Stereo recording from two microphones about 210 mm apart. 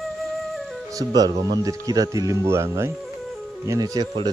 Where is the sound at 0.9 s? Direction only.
15° right (ahead or behind).